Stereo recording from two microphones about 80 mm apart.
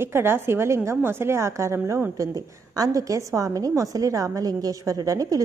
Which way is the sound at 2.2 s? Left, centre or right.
Right.